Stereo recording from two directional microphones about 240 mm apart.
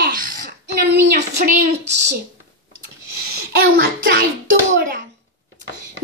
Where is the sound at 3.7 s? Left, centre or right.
Right.